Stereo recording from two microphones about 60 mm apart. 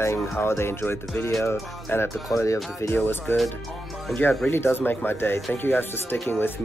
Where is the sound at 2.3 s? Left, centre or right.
Left.